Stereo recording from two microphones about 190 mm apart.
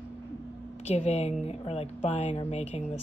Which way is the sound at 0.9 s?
35° left (ahead or behind).